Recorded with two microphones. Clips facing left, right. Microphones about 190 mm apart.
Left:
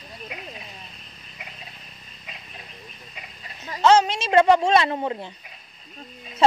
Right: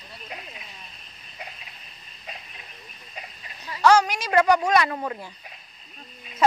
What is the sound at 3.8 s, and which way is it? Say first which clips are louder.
Speech: left 1 dB; 25° left (ahead or behind).